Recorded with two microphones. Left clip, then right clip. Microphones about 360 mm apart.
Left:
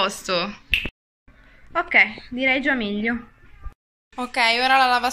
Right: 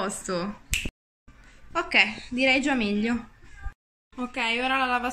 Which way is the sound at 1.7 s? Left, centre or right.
Centre.